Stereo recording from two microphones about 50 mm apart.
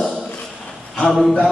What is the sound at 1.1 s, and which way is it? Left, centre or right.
Speech, centre.